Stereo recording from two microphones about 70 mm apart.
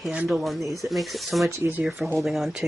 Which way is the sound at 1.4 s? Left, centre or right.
Right.